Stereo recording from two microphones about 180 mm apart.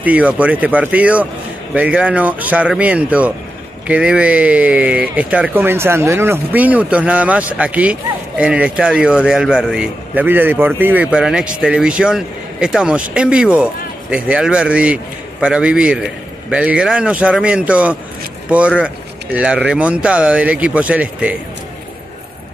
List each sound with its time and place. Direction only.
0.0 s a man's voice: 10° right (ahead or behind)